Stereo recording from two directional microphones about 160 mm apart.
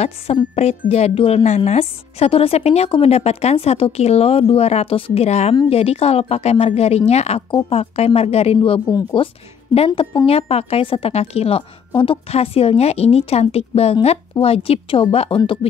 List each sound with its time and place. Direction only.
0.6 s speech: 40° left (ahead or behind)